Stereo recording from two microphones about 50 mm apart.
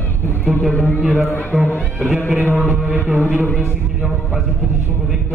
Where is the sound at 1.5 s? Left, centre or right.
Centre.